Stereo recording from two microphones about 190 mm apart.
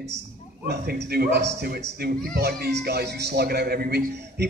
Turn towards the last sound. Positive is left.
turn(degrees=-55)  # may be behind; listen again after turning